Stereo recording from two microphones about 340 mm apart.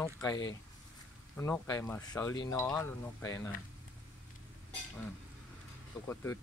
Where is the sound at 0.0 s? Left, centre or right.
Centre.